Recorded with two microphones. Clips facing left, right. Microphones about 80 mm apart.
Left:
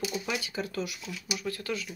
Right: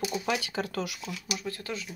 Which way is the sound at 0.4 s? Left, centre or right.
Right.